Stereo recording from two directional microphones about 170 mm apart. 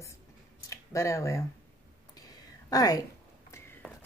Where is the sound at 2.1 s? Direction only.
20° left (ahead or behind).